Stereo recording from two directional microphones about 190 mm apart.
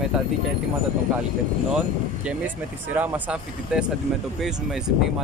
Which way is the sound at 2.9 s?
10° right (ahead or behind).